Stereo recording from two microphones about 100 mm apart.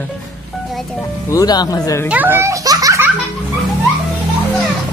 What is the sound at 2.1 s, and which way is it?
Speech, 20° right (ahead or behind).